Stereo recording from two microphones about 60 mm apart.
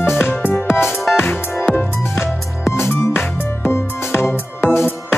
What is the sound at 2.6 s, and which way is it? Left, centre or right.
Music, left.